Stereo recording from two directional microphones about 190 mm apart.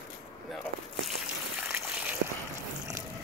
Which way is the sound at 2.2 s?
80° right.